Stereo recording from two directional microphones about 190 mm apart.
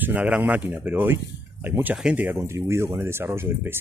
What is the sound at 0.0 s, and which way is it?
Speech, 10° right (ahead or behind).